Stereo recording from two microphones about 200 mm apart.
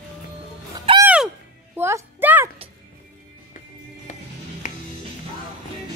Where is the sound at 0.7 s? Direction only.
25° right (ahead or behind).